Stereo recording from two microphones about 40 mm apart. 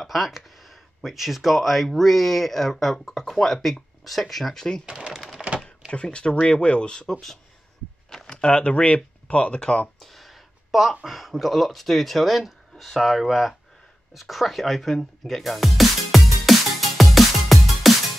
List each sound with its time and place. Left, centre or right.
0.0 s speech: centre
4.8 s speech: right
5.1 s a sound: centre
5.9 s speech: left
7.1 s speech: centre
8.3 s speech: left
9.9 s a sound: centre
11.1 s speech: centre
14.1 s music: centre